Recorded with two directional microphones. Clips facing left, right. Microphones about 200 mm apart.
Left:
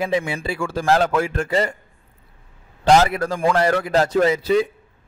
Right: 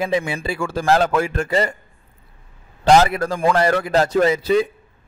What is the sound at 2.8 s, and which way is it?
A man's voice, 40° right (ahead or behind).